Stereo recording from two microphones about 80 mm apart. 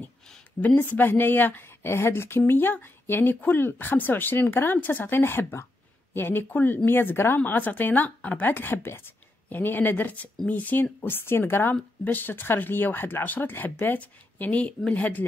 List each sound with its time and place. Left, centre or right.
0.6 s speech: left